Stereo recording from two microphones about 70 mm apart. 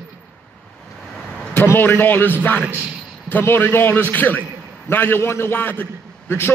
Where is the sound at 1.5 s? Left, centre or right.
Left.